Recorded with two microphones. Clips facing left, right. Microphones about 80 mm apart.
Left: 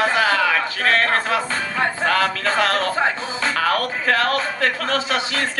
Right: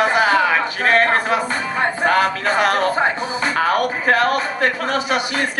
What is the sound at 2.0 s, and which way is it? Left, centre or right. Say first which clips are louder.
Music: right 4 dB; right.